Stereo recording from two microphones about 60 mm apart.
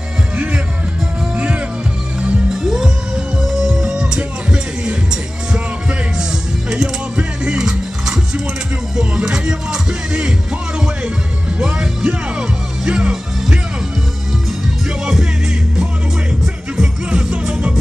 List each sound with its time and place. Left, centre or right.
1.3 s music: right
2.5 s music: centre
11.6 s music: centre
16.7 s music: centre